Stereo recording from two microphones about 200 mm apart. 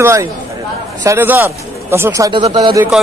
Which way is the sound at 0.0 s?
15° right (ahead or behind).